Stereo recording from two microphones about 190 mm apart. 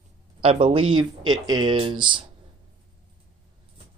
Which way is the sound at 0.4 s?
35° right (ahead or behind).